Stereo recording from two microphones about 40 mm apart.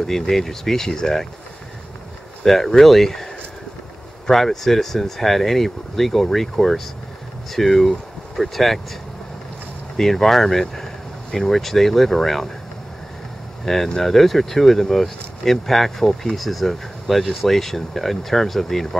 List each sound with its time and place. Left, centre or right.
0.0 s speech: centre
2.4 s speech: centre
4.3 s speech: centre
9.9 s speech: centre
13.8 s speech: centre